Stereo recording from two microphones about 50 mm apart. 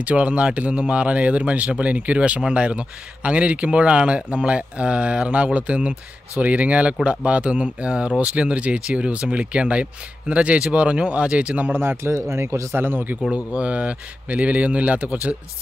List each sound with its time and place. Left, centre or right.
0.0 s speech: right
11.7 s speech: right
12.1 s speech: right
12.7 s speech: right
13.3 s speech: right